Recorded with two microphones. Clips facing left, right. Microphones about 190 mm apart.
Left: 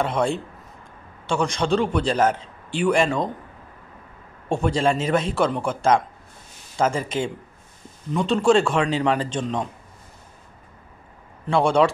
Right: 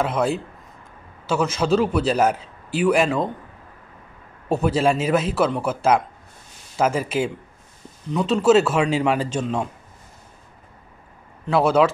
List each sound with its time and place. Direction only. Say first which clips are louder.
0.0 s a man's voice: right 1 dB; 5° right (ahead or behind)
4.5 s a man's voice: right 2 dB; 5° right (ahead or behind)
11.4 s a man's voice: right 1 dB; 5° right (ahead or behind)